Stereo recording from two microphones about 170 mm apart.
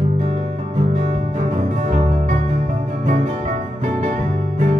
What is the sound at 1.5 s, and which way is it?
Music, 50° right (ahead or behind).